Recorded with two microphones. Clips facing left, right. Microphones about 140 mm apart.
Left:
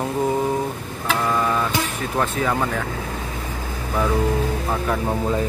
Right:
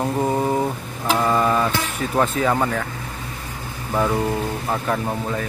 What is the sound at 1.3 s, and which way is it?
Printer, 20° right (ahead or behind).